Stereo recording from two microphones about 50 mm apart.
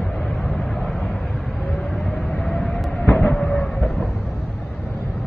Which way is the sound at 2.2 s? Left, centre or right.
Left.